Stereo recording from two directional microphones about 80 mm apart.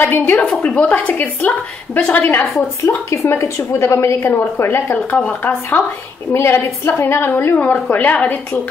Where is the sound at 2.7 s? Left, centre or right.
Left.